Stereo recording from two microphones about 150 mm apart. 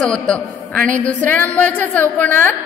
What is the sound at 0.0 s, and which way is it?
A woman's voice, 5° left (ahead or behind).